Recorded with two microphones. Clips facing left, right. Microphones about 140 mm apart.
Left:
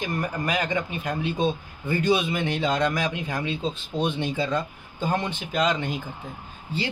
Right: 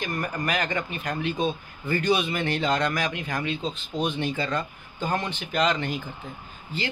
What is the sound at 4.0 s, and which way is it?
Speech, 20° left (ahead or behind).